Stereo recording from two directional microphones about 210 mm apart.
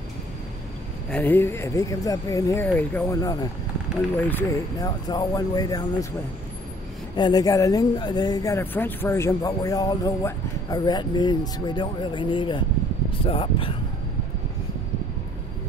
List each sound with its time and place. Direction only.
1.1 s speech: 10° left (ahead or behind)
7.2 s speech: 20° left (ahead or behind)